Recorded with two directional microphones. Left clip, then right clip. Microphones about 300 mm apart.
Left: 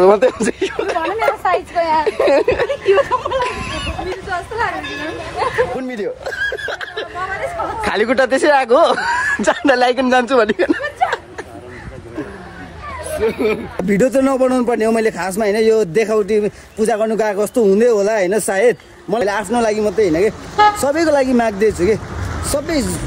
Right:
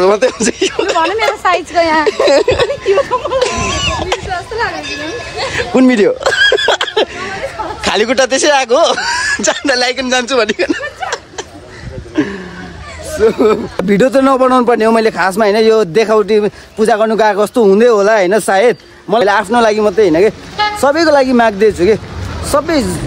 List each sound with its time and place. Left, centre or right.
0.0 s a man's voice: centre
1.1 s a woman's voice: right
2.0 s speech: centre
5.8 s speech: right
6.2 s a sound: right
7.8 s a man's voice: centre
13.2 s a man's voice: centre
20.8 s a man's voice: centre